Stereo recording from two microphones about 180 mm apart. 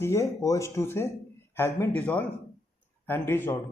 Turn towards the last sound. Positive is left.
turn(degrees=10)  # may be behind; listen again after turning